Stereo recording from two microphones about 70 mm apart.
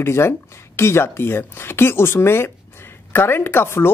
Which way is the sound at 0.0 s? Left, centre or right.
Left.